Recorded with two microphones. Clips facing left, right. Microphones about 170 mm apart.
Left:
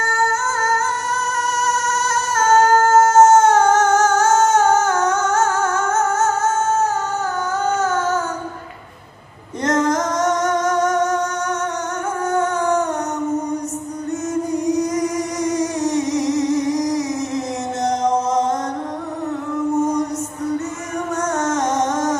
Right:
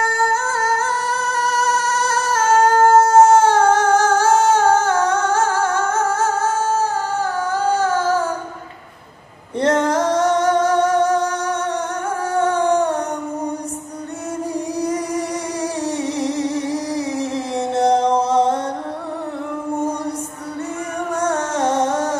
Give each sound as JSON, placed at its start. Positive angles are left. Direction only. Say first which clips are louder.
{"t": 0.0, "sound": "singing", "louder": "right 1 dB", "side_deg": -30}
{"t": 7.5, "sound": "music", "louder": "right 2 dB", "side_deg": -30}
{"t": 9.6, "sound": "music", "louder": "right 2 dB", "side_deg": -30}
{"t": 14.5, "sound": "music", "louder": "left 2 dB", "side_deg": -30}
{"t": 21.1, "sound": "music", "louder": "even", "side_deg": -30}